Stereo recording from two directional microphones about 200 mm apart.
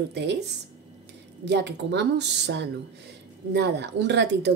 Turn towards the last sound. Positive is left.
turn(degrees=-60)  # may be behind; listen again after turning